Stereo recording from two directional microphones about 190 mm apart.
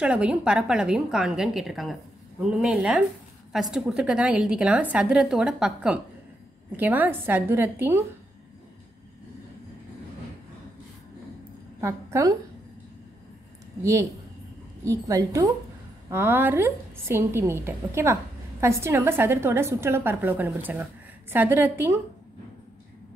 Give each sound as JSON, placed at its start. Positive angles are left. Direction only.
{"t": 0.0, "sound": "a woman's voice", "side_deg": -5}
{"t": 11.8, "sound": "a woman's voice", "side_deg": -15}
{"t": 14.9, "sound": "a woman's voice", "side_deg": -15}